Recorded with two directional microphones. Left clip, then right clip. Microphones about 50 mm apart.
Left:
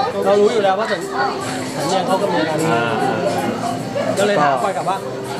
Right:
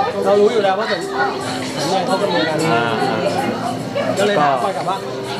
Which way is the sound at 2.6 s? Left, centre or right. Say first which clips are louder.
Right 1 dB; centre.